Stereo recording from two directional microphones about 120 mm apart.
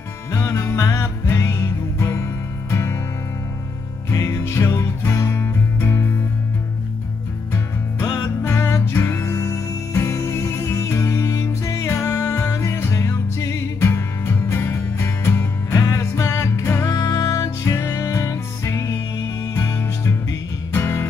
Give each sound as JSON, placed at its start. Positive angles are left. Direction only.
{"t": 0.3, "sound": "music", "side_deg": 20}
{"t": 4.1, "sound": "music", "side_deg": 25}
{"t": 7.5, "sound": "music", "side_deg": 20}